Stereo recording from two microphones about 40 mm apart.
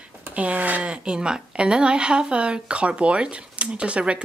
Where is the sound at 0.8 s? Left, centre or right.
Right.